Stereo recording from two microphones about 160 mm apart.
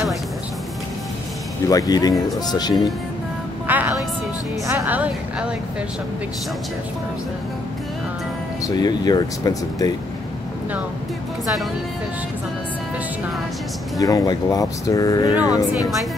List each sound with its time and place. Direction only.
1.7 s speech: 25° left (ahead or behind)
3.6 s music: 10° right (ahead or behind)
4.6 s a woman's voice: 10° right (ahead or behind)
8.6 s speech: 25° left (ahead or behind)
13.9 s speech: 20° left (ahead or behind)